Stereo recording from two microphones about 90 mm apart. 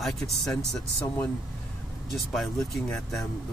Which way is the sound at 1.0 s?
25° left (ahead or behind).